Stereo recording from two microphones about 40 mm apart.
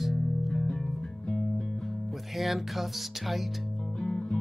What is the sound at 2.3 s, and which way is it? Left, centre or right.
Speech, centre.